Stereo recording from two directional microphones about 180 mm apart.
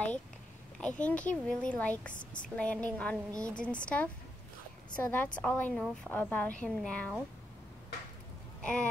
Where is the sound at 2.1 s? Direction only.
45° left (ahead or behind).